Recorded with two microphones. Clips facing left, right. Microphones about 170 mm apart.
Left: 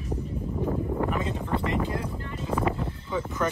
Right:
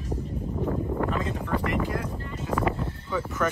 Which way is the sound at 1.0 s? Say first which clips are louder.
Even; 15° left (ahead or behind).